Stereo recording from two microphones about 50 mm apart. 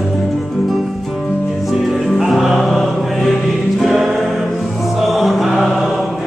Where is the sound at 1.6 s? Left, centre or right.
Centre.